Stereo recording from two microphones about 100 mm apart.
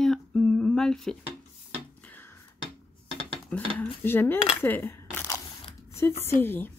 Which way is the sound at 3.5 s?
15° left (ahead or behind).